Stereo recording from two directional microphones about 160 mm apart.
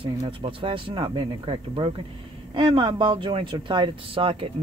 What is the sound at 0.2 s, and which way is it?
Speech, 35° right (ahead or behind).